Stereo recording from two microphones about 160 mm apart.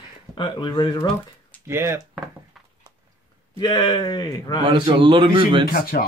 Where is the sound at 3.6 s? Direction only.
25° left (ahead or behind).